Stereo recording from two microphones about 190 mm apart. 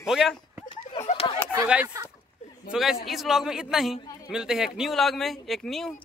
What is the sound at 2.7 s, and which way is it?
Speech, centre (ahead or behind).